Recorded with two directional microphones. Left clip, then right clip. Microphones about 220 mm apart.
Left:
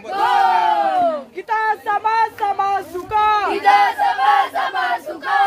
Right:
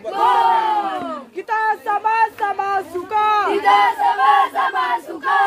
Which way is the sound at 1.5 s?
15° right (ahead or behind).